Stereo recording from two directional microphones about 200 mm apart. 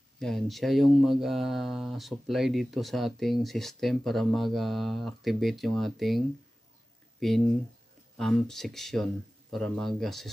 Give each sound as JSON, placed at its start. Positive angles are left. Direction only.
{"t": 0.2, "sound": "speech", "side_deg": 0}